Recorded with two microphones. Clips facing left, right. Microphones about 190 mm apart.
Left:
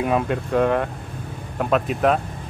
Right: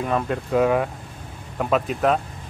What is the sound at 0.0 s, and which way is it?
Speech, 10° left (ahead or behind).